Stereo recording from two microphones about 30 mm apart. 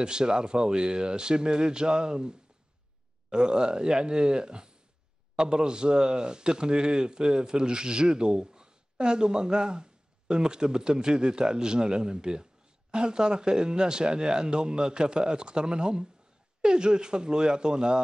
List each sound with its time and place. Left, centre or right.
0.0 s speech: right